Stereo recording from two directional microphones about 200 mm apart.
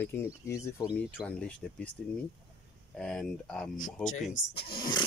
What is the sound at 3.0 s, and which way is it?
Speech, 5° left (ahead or behind).